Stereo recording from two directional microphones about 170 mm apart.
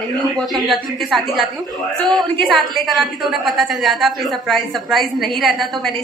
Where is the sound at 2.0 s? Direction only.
25° right (ahead or behind).